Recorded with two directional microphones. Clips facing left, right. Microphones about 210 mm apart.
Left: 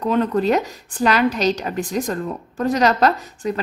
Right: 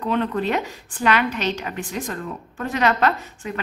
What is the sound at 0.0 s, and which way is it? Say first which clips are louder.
A woman's voice: left 4 dB; 40° left (ahead or behind).